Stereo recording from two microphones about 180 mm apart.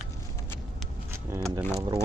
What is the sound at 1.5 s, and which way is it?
Speech, 20° right (ahead or behind).